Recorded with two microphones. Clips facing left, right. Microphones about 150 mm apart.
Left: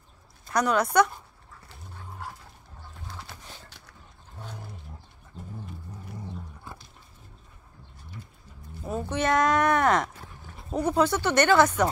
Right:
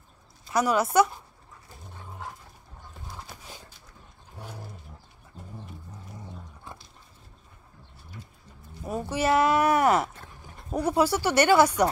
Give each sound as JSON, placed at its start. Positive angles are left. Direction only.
{"t": 0.5, "sound": "speech", "side_deg": -5}
{"t": 3.3, "sound": "horse", "side_deg": -10}
{"t": 3.6, "sound": "dog", "side_deg": 70}
{"t": 5.3, "sound": "roaring cats", "side_deg": -10}
{"t": 8.8, "sound": "speech", "side_deg": -10}